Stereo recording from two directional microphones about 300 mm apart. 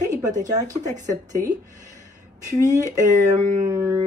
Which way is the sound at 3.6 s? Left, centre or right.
Centre.